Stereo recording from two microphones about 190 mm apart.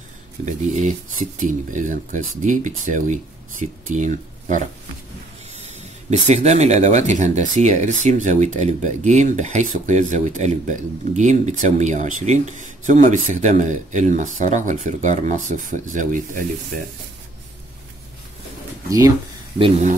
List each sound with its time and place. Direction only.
0.7 s speech: 40° right (ahead or behind)
18.9 s speech: 15° right (ahead or behind)